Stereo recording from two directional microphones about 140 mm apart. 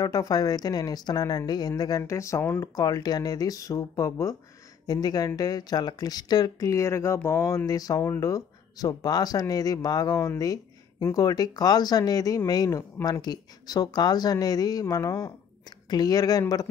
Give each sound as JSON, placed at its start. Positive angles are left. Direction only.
{"t": 0.0, "sound": "speech", "side_deg": 25}